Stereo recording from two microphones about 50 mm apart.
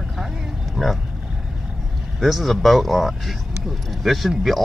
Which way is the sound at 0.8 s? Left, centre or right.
Centre.